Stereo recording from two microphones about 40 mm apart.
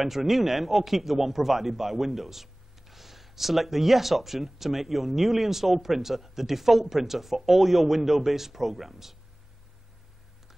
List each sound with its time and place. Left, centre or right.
0.0 s speech: centre